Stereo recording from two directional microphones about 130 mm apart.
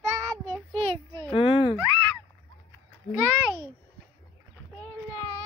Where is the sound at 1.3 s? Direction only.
45° left (ahead or behind).